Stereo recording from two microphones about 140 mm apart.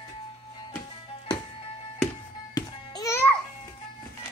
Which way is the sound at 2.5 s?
25° left (ahead or behind).